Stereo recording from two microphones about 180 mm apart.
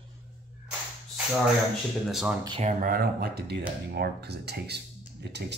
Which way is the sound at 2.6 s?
50° right (ahead or behind).